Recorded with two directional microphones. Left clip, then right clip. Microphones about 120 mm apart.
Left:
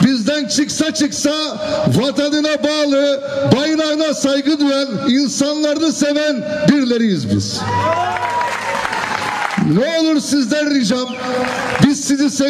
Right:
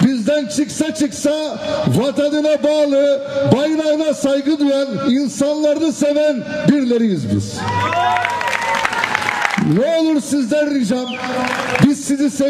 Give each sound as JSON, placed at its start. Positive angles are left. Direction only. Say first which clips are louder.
{"t": 0.0, "sound": "a man's voice", "louder": "even", "side_deg": 40}
{"t": 9.8, "sound": "a man's voice", "louder": "left 1 dB", "side_deg": 40}